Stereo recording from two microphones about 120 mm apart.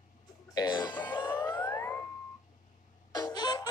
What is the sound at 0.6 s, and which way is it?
Music, 35° left (ahead or behind).